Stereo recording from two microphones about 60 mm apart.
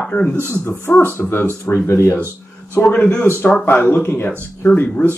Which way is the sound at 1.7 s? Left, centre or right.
Left.